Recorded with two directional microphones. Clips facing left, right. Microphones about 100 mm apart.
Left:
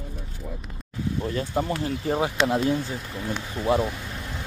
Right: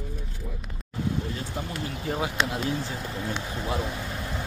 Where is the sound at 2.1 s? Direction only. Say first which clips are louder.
Left 5 dB; 30° left (ahead or behind).